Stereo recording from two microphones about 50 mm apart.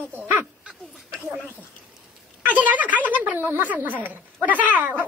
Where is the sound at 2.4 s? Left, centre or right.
Right.